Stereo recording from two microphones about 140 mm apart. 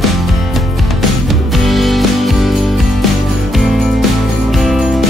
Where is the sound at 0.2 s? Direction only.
Centre (ahead or behind).